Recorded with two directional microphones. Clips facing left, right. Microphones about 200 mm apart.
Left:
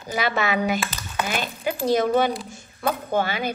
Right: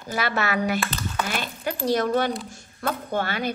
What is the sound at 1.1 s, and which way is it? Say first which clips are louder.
A woman's voice: left 4 dB; centre (ahead or behind).